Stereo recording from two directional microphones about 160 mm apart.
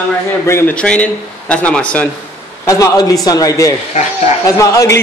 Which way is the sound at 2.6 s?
20° left (ahead or behind).